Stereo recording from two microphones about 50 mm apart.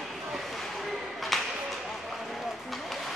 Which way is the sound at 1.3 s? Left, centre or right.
Centre.